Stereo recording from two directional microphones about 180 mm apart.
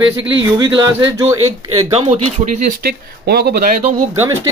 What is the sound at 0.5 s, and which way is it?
Speech, 20° right (ahead or behind).